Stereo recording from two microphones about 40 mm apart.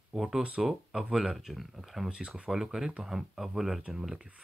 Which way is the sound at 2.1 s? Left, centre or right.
Right.